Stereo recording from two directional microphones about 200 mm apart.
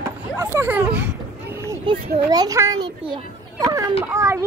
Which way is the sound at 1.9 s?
25° right (ahead or behind).